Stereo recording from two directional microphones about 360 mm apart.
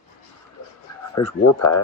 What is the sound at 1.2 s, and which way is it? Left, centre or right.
Speech, centre.